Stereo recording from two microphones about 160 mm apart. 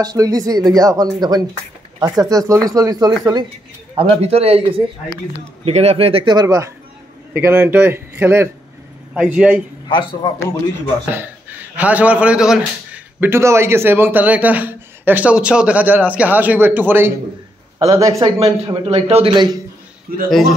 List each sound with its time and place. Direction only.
0.0 s speech: 25° right (ahead or behind)
3.9 s speech: 35° right (ahead or behind); by 9.6 s 5° right (ahead or behind)
9.8 s speech: 30° left (ahead or behind)
11.1 s speech: 10° right (ahead or behind)
18.4 s speech: 40° right (ahead or behind)
20.1 s a man's voice: 65° right (ahead or behind)